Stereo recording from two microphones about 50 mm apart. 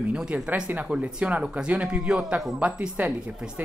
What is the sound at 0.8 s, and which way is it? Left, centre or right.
Speech, centre.